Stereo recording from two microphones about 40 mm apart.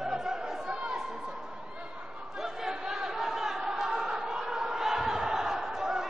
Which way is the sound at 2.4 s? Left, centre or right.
Centre.